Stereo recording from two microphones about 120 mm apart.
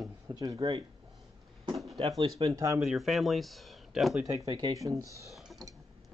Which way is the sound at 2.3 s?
30° right (ahead or behind).